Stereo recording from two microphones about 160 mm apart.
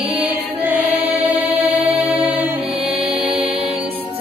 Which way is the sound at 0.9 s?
10° right (ahead or behind).